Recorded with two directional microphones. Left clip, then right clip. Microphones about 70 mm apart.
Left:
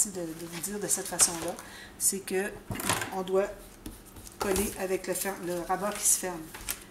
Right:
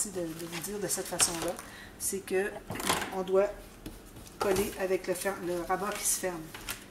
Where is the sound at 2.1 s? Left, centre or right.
Left.